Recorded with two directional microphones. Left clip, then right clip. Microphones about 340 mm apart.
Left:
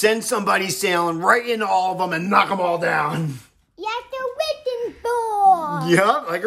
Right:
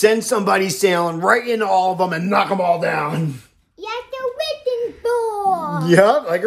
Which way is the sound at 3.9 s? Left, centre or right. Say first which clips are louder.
Right 1 dB; centre.